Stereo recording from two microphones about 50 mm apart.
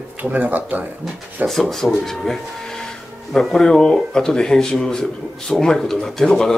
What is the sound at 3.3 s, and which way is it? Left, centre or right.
Speech, centre.